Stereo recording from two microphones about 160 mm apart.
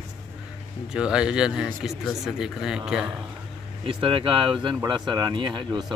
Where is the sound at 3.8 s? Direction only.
30° right (ahead or behind).